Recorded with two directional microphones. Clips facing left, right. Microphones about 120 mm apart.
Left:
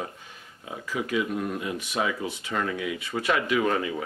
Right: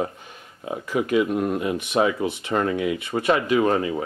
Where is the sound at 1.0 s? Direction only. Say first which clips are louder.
Right 7 dB; 45° right (ahead or behind).